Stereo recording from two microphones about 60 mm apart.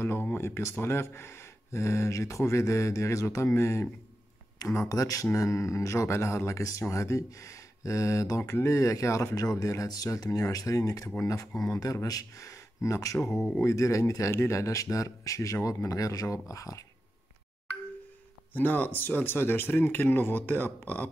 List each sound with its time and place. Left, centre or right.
0.0 s a sound: left
0.7 s speech: left
4.8 s speech: left
8.6 s speech: left
13.2 s speech: centre
13.6 s speech: left
15.5 s speech: left
18.5 s speech: left